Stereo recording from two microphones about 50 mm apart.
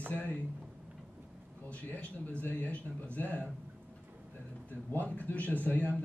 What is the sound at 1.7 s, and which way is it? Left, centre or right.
Speech, left.